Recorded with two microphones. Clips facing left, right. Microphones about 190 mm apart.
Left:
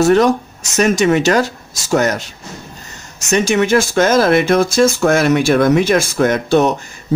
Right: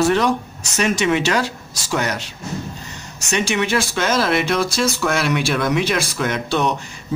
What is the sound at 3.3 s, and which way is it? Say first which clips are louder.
Speech: left 7 dB; 45° left (ahead or behind).